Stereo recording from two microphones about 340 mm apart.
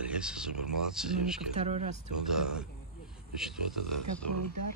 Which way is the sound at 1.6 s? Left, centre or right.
Centre.